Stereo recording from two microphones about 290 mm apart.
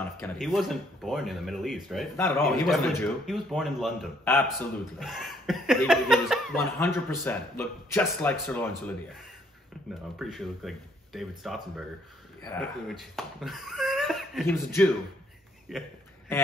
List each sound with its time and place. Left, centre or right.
0.0 s speech: centre
10.1 s speech: centre
12.8 s speech: centre